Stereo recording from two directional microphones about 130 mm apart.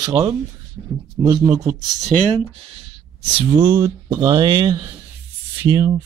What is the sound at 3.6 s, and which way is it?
Speech, 25° right (ahead or behind).